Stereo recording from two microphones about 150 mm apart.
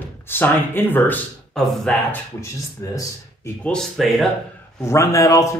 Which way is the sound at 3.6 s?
5° left (ahead or behind).